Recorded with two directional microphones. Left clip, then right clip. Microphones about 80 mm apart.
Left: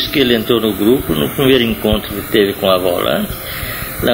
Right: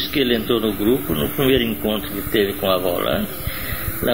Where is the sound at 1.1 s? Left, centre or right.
Left.